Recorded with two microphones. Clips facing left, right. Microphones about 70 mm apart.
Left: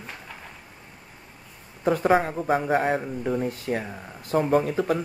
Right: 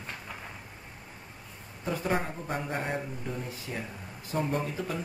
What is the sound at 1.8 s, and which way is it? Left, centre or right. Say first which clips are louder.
Speech: left 10 dB; left.